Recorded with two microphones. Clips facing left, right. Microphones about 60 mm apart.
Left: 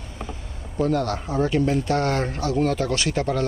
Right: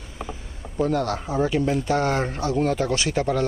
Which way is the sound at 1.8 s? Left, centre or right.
Centre.